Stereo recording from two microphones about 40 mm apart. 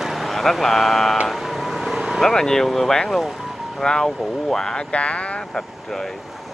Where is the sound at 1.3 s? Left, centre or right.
Centre.